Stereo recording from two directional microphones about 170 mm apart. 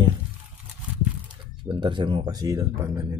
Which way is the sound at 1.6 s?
30° right (ahead or behind).